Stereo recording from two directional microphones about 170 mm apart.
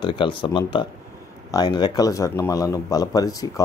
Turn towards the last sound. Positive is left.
turn(degrees=20)  # may be behind; listen again after turning